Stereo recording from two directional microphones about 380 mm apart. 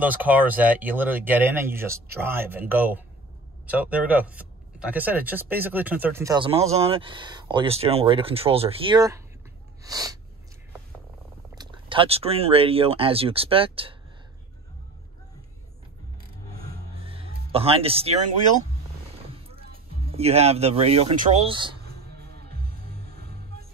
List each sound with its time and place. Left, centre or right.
0.0 s speech: centre
11.5 s speech: centre
16.5 s music: centre
19.3 s speech: centre
22.2 s music: right